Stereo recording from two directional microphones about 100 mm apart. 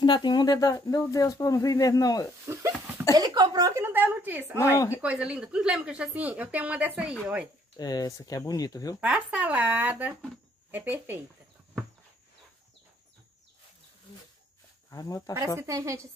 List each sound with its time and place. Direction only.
0.0 s speech: 50° left (ahead or behind)
2.5 s a woman's voice: 30° right (ahead or behind)
3.2 s a sound: 40° right (ahead or behind)
3.7 s a woman's voice: 20° right (ahead or behind)
4.7 s speech: 25° left (ahead or behind)
5.0 s speech: 10° right (ahead or behind)
7.7 s speech: 40° left (ahead or behind)
9.0 s speech: 15° right (ahead or behind)
14.9 s speech: 35° left (ahead or behind)
15.5 s a woman's voice: 30° right (ahead or behind)